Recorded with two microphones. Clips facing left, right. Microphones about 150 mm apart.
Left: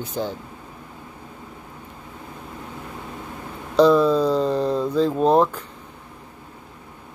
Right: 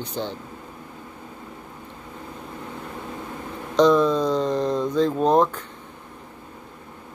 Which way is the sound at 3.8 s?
5° left (ahead or behind).